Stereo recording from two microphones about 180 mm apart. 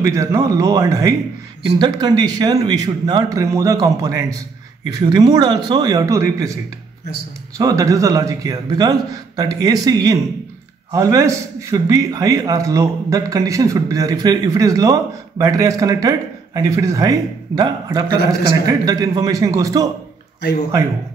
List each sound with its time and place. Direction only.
0.0 s a man's voice: 15° right (ahead or behind)